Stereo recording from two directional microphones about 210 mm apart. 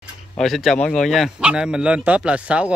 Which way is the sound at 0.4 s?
Centre (ahead or behind).